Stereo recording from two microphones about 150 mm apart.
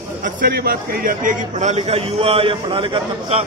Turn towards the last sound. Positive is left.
turn(degrees=-40)  # may be behind; listen again after turning